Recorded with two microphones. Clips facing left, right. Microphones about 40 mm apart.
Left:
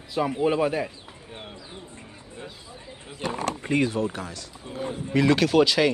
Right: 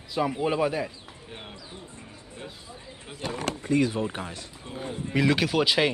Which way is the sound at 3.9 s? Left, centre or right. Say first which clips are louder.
Left 2 dB; right.